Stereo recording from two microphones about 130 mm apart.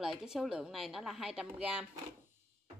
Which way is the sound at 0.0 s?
Centre (ahead or behind).